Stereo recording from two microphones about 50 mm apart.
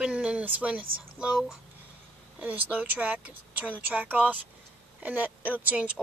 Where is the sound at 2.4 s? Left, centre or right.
Right.